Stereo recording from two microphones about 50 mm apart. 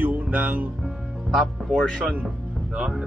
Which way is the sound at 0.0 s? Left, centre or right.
Right.